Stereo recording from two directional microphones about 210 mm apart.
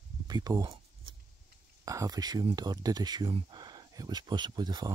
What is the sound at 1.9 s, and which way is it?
Speech, 15° right (ahead or behind).